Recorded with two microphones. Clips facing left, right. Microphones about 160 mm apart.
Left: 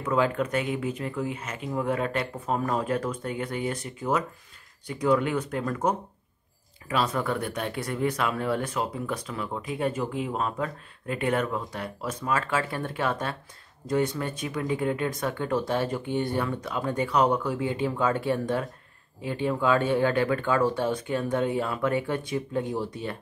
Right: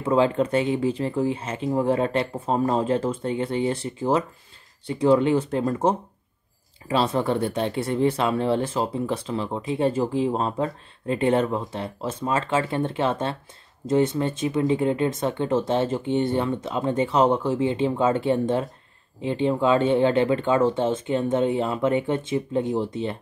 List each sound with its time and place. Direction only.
0.0 s speech: 30° right (ahead or behind)